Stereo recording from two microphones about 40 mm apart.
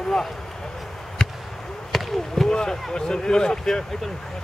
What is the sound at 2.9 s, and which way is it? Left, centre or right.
Speech, centre.